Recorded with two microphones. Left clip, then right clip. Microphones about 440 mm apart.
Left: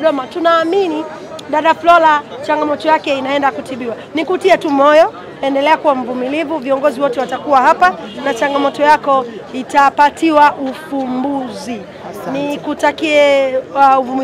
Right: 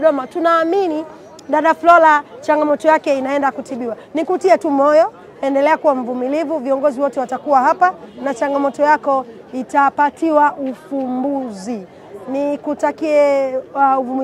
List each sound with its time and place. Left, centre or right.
0.0 s speech: right
12.4 s speech: right